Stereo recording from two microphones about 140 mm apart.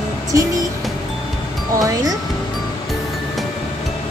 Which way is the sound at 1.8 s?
25° right (ahead or behind).